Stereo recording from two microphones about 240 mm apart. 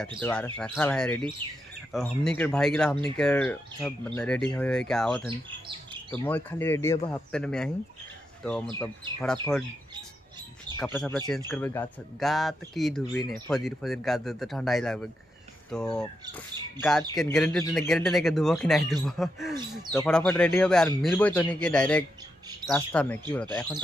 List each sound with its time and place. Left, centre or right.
0.2 s speech: centre
8.7 s speech: centre
10.8 s speech: centre
17.1 s speech: centre